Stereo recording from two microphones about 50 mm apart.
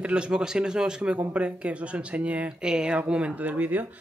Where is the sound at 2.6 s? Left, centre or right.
Centre.